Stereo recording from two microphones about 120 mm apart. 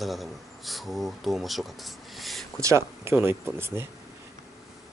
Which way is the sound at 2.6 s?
25° right (ahead or behind).